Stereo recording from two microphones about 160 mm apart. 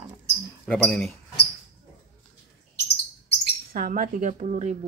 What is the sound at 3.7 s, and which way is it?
Speech, 60° right (ahead or behind).